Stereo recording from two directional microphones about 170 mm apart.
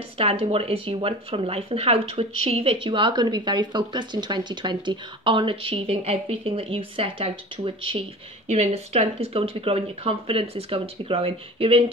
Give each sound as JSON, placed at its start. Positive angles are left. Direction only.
{"t": 0.2, "sound": "speech", "side_deg": -35}